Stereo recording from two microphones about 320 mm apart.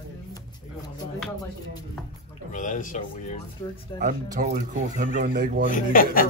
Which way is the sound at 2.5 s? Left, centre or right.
Left.